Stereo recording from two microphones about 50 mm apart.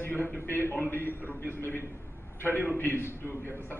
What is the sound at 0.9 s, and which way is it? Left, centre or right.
A man's voice, left.